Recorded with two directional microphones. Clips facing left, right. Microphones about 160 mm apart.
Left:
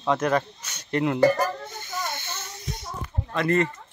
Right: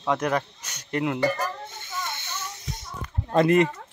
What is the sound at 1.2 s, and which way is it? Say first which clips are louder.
Speech: left 5 dB; 40° left (ahead or behind).